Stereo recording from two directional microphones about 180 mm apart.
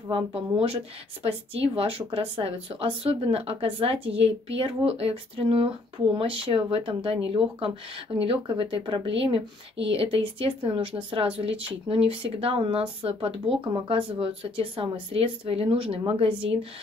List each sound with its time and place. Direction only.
0.1 s speech: 30° right (ahead or behind)